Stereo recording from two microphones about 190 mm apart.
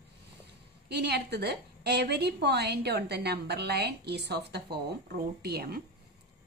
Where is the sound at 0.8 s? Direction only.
60° right (ahead or behind).